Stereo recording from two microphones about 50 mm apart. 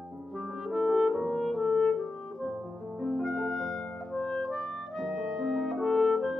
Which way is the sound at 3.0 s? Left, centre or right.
Centre.